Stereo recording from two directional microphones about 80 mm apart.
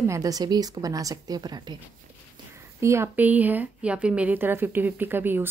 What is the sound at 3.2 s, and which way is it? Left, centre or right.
A woman's voice, right.